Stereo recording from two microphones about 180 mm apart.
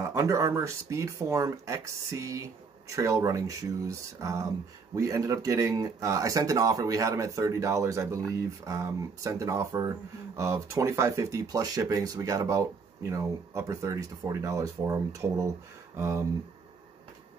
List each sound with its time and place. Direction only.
0.0 s speech: 15° right (ahead or behind)